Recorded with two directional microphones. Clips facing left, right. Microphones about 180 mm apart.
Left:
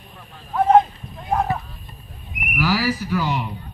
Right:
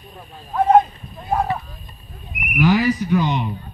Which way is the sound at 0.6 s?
Centre (ahead or behind).